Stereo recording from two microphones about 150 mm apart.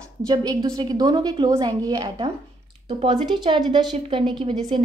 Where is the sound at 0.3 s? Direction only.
30° right (ahead or behind).